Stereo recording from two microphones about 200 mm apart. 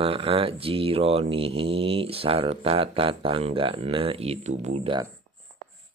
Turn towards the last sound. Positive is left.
turn(degrees=-30)  # may be behind; listen again after turning